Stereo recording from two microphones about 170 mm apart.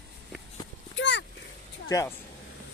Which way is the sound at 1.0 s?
90° left.